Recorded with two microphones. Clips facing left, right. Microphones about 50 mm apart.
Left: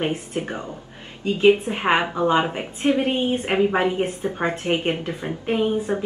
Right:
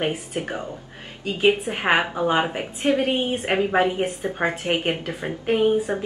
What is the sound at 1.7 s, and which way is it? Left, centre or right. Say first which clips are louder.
Speech: even; centre.